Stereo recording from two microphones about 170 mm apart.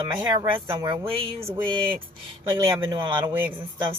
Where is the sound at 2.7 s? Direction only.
25° right (ahead or behind).